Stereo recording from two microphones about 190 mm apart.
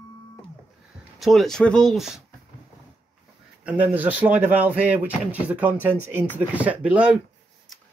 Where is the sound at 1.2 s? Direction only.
Centre (ahead or behind).